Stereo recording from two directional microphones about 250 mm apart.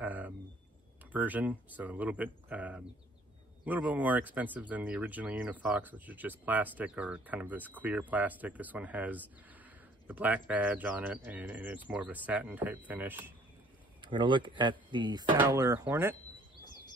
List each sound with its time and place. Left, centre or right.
0.0 s a sound: centre
1.1 s speech: centre
14.0 s speech: centre